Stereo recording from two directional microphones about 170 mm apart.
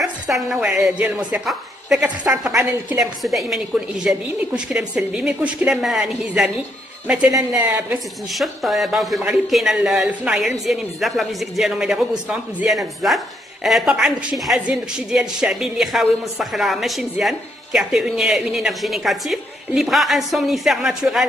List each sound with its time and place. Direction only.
0.0 s speech: centre (ahead or behind)
7.3 s a woman's voice: 15° right (ahead or behind)
8.3 s speech: centre (ahead or behind)